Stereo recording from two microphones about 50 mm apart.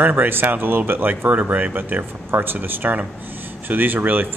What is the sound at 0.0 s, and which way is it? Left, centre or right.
Speech, right.